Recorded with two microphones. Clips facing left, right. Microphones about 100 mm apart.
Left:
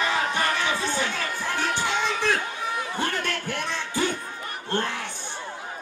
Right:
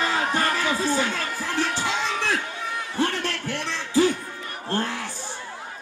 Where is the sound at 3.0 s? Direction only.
30° right (ahead or behind).